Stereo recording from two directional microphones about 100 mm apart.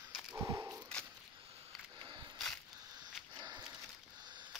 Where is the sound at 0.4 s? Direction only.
30° right (ahead or behind).